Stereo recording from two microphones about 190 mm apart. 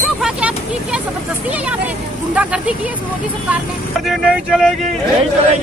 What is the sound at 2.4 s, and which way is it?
Vehicle, 5° right (ahead or behind).